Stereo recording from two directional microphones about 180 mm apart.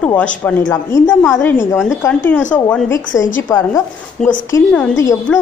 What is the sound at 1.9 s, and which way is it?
A woman's voice, 10° left (ahead or behind).